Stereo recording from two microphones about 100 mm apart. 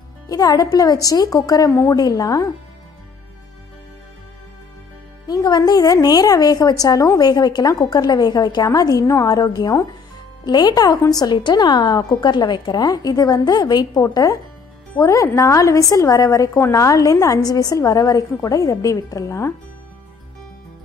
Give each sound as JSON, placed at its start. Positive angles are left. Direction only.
{"t": 0.3, "sound": "a woman's voice", "side_deg": 40}
{"t": 5.2, "sound": "a woman's voice", "side_deg": 45}